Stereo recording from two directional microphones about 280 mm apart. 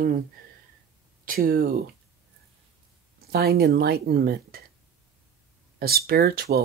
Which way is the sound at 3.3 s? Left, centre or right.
Right.